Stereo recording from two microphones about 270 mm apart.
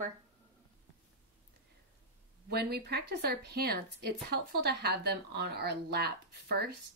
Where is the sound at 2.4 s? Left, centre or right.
Right.